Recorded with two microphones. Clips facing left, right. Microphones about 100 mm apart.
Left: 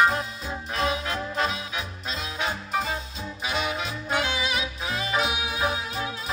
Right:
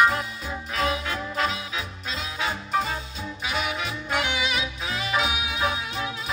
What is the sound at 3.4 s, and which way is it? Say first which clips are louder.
Music: even; 25° left (ahead or behind).